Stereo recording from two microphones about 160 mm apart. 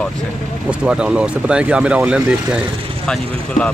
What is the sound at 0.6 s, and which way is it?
Speech, 5° right (ahead or behind).